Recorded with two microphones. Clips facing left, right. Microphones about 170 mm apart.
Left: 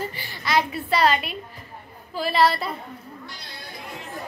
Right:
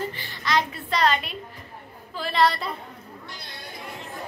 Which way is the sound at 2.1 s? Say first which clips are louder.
Left 2 dB; 5° left (ahead or behind).